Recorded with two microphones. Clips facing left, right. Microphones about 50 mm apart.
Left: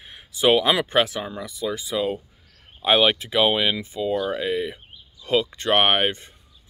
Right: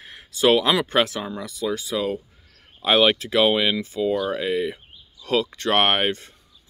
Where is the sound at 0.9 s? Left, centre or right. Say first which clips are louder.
Even; centre.